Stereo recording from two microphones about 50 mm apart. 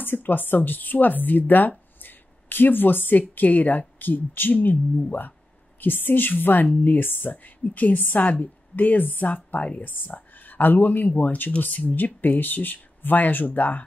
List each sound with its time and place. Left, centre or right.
0.0 s speech: left